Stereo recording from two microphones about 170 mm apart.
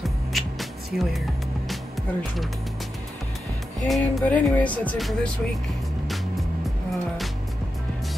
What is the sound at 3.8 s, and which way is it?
Music, 5° left (ahead or behind).